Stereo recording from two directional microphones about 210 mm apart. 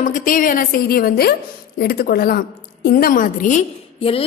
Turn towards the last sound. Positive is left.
turn(degrees=30)  # may be behind; listen again after turning